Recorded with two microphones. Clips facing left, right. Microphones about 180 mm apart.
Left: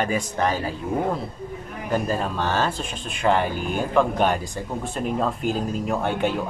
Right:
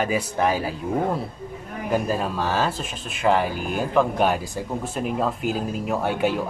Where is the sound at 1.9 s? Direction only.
5° right (ahead or behind).